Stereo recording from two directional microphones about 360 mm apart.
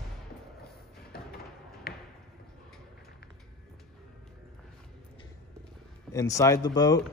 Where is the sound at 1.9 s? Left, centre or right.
Left.